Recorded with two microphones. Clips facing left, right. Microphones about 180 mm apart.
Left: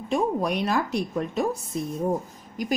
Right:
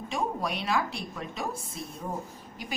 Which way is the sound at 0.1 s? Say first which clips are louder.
Left 7 dB; 45° left (ahead or behind).